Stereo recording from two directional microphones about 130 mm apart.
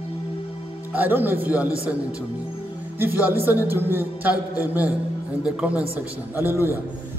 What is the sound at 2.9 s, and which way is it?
A man's voice, 15° right (ahead or behind).